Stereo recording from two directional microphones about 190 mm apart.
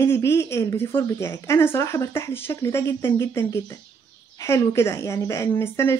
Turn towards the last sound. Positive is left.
turn(degrees=10)  # may be behind; listen again after turning